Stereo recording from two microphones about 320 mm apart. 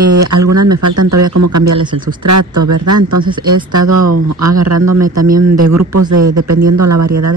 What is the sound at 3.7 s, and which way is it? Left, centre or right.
Speech, right.